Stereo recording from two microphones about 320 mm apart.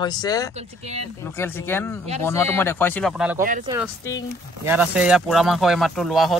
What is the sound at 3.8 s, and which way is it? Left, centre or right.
Speech, centre.